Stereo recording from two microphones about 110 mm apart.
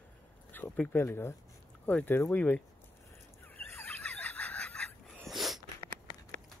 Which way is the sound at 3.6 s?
20° left (ahead or behind).